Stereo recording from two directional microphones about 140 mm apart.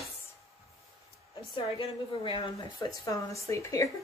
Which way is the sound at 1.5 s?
35° left (ahead or behind).